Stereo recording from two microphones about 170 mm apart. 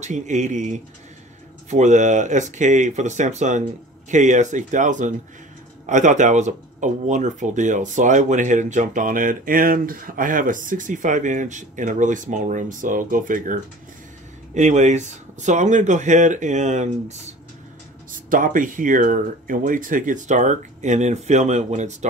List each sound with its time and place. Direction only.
0.0 s speech: 45° right (ahead or behind)
18.1 s speech: 50° right (ahead or behind)